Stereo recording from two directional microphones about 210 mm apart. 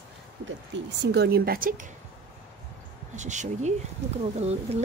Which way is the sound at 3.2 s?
35° right (ahead or behind).